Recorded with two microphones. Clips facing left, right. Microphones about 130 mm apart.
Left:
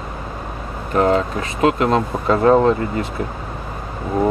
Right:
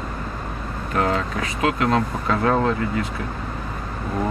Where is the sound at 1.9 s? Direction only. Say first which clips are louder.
Left 4 dB; 25° left (ahead or behind).